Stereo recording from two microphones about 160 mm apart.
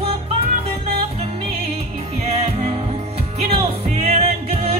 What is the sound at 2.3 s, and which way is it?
Music, 40° right (ahead or behind).